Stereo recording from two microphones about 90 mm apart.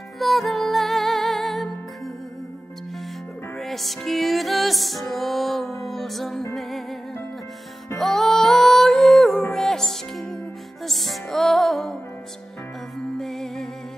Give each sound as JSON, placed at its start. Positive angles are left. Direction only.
{"t": 0.2, "sound": "music", "side_deg": 0}
{"t": 3.5, "sound": "music", "side_deg": 0}
{"t": 8.0, "sound": "music", "side_deg": 5}
{"t": 13.2, "sound": "music", "side_deg": 5}